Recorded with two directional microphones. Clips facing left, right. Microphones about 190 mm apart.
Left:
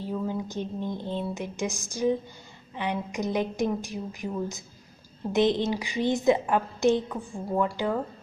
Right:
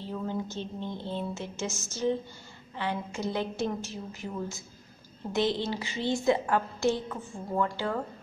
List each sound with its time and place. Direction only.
0.0 s a woman's voice: 10° left (ahead or behind)